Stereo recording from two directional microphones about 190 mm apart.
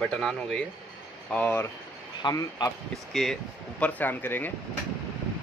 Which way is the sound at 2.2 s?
20° left (ahead or behind).